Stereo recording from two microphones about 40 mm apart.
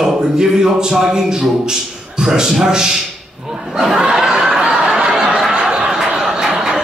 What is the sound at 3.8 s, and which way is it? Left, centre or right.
Snicker, centre.